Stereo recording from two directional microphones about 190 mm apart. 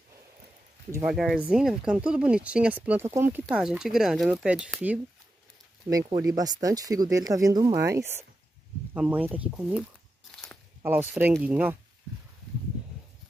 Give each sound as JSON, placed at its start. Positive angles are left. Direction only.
{"t": 1.0, "sound": "speech", "side_deg": 0}
{"t": 5.9, "sound": "speech", "side_deg": -20}